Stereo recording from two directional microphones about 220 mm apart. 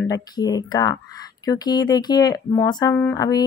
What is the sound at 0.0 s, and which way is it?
Speech, 15° left (ahead or behind).